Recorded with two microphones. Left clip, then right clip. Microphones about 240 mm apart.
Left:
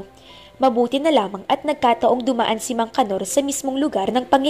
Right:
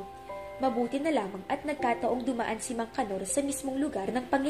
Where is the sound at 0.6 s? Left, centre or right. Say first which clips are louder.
Left 12 dB; left.